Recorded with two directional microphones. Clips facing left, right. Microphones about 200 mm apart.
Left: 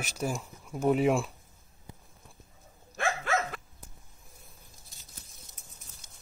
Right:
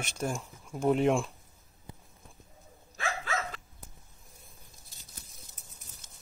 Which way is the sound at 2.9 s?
55° left (ahead or behind).